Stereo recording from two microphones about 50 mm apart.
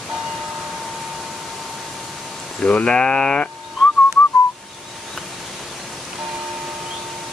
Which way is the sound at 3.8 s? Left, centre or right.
Centre.